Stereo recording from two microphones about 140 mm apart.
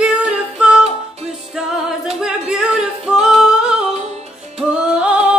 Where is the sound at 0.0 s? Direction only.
5° right (ahead or behind).